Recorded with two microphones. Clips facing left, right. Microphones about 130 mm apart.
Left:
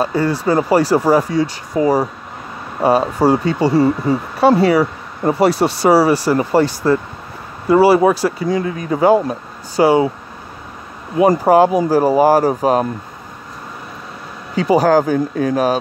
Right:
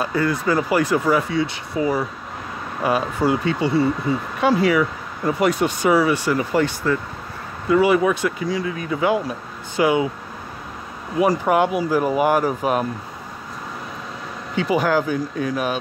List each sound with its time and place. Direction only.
0.0 s speech: 30° left (ahead or behind)
11.2 s speech: 35° left (ahead or behind)
14.5 s speech: 35° left (ahead or behind)